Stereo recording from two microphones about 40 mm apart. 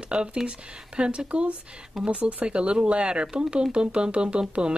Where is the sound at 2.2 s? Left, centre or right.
Right.